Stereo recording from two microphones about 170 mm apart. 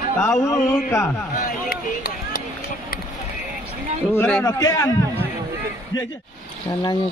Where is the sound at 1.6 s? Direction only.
65° left (ahead or behind).